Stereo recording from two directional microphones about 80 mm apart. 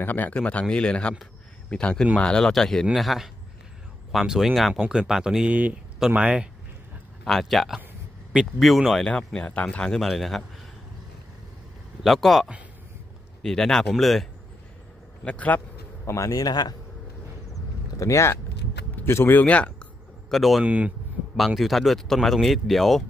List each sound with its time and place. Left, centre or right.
0.0 s speech: left; by 6.5 s centre
7.2 s speech: centre
9.0 s speech: centre
12.0 s speech: centre
15.2 s speech: centre
16.1 s speech: left
16.4 s speech: left
17.5 s a sound: left; by 20.3 s centre
20.3 s speech: centre
20.6 s speech: centre
21.4 s speech: centre